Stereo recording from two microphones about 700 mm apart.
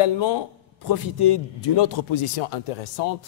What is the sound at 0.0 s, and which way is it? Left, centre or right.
A man's voice, left.